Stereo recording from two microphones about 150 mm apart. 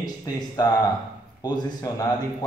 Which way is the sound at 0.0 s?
25° left (ahead or behind).